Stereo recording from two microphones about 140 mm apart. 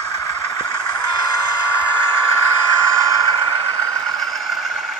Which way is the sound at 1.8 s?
15° left (ahead or behind).